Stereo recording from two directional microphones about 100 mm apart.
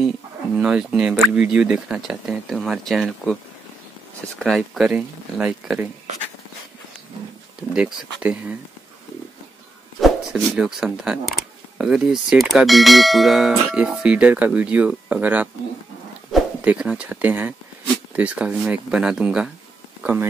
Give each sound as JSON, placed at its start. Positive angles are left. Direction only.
{"t": 0.6, "sound": "speech", "side_deg": -10}
{"t": 4.4, "sound": "speech", "side_deg": 0}
{"t": 7.7, "sound": "speech", "side_deg": -10}
{"t": 9.9, "sound": "speech", "side_deg": 0}
{"t": 16.6, "sound": "speech", "side_deg": -10}